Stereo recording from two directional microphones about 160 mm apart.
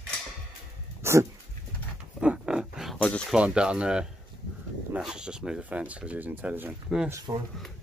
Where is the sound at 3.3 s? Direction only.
5° right (ahead or behind).